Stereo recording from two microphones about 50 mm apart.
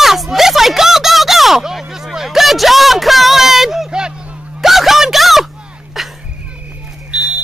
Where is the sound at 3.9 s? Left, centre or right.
Centre.